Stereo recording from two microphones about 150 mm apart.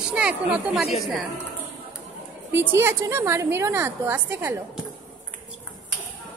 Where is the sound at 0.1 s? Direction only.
5° right (ahead or behind).